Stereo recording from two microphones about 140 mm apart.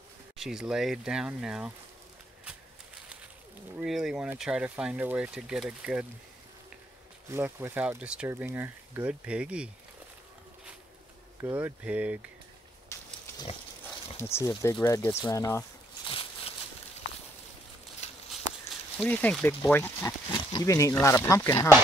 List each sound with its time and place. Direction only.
0.4 s speech: 5° right (ahead or behind)
3.7 s speech: 5° right (ahead or behind)
7.2 s speech: 20° right (ahead or behind)
11.4 s speech: 15° right (ahead or behind)
12.9 s pig: 20° left (ahead or behind)
14.1 s speech: 20° left (ahead or behind)
16.1 s a sound: 40° left (ahead or behind)
18.0 s walk: 55° left (ahead or behind)
18.9 s speech: 10° left (ahead or behind)
20.2 s pig: 30° left (ahead or behind)
21.0 s speech: 20° left (ahead or behind)